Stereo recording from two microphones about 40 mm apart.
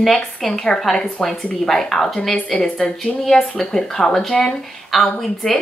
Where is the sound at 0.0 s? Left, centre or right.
Centre.